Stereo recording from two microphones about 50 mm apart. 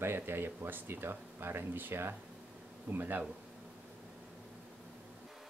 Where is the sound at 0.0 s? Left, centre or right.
Right.